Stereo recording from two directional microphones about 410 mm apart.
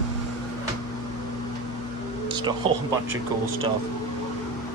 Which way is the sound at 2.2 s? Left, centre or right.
Centre.